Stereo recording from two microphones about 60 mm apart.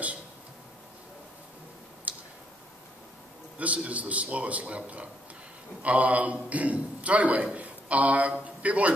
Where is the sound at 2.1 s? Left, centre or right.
Right.